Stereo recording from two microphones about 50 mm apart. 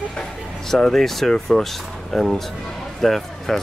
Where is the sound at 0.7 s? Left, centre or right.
Centre.